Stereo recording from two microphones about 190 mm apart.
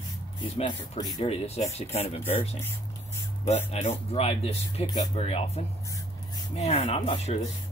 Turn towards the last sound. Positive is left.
turn(degrees=35)  # may be behind; listen again after turning